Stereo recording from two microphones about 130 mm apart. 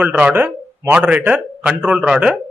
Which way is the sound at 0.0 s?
10° right (ahead or behind).